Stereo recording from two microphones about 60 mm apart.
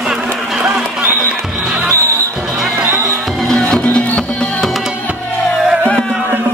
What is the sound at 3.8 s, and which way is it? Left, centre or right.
Music, left.